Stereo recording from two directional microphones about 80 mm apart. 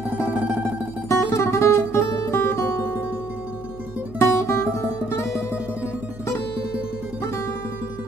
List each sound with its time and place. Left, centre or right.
0.3 s music: right
1.0 s music: left
4.2 s music: left